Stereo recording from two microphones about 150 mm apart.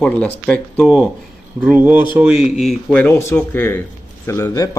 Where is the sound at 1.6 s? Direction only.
10° right (ahead or behind).